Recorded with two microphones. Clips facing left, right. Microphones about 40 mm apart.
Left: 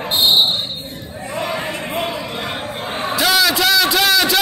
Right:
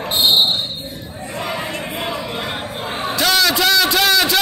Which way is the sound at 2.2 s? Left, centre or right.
Centre.